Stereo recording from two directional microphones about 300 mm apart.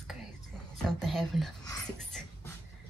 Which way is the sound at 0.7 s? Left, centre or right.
Centre.